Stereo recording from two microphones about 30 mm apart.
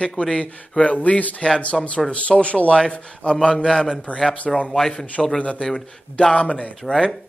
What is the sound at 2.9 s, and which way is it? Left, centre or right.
A man's voice, left.